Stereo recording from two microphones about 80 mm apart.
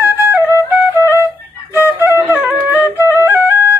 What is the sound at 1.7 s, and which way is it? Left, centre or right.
Flute, right.